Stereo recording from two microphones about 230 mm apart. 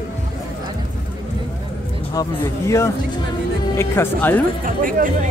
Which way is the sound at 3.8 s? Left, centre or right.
Centre.